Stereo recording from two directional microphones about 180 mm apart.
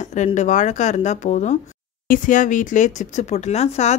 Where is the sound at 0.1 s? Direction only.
40° left (ahead or behind).